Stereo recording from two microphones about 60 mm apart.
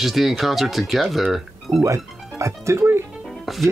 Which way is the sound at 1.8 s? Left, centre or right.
Right.